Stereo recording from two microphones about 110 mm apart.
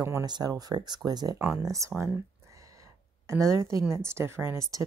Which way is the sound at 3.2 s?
25° right (ahead or behind).